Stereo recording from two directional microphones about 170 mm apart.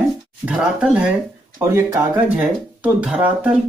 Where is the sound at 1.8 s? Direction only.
15° right (ahead or behind).